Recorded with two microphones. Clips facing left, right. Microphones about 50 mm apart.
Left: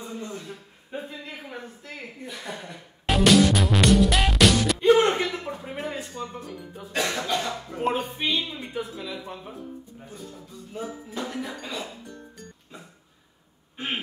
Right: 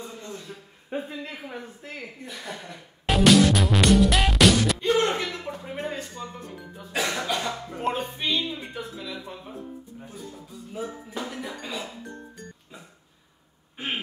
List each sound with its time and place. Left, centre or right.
0.0 s a sound: centre
0.8 s speech: right
1.4 s speech: centre
2.2 s music: centre
4.7 s music: centre
5.6 s a sound: centre
6.9 s speech: centre
10.7 s speech: centre